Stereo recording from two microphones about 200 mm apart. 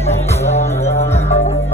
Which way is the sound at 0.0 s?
30° left (ahead or behind).